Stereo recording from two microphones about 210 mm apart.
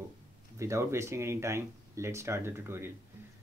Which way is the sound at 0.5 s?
15° right (ahead or behind).